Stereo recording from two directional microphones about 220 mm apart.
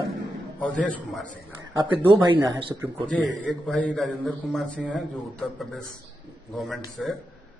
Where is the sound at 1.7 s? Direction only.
20° right (ahead or behind).